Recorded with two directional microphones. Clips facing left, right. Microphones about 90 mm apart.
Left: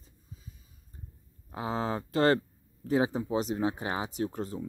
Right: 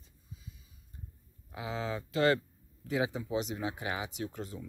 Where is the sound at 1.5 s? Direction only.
40° left (ahead or behind).